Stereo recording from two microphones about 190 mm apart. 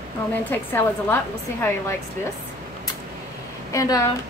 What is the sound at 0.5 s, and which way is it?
A woman's voice, 10° left (ahead or behind).